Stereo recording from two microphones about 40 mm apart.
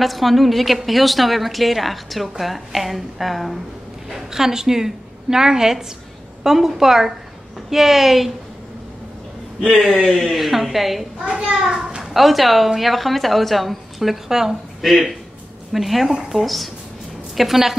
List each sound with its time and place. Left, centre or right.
0.0 s a woman's voice: centre
4.1 s a woman's voice: centre
9.6 s a man's voice: centre
10.3 s a woman's voice: centre
11.2 s a child's voice: right
11.6 s a woman's voice: centre
14.8 s a woman's voice: centre